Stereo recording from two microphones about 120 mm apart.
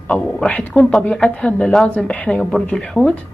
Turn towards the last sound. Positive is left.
turn(degrees=5)  # may be behind; listen again after turning